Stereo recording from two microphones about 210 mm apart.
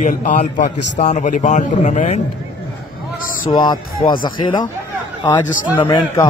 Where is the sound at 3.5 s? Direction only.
20° left (ahead or behind).